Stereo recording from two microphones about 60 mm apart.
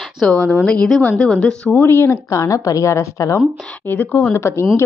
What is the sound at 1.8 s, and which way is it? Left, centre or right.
Speech, left.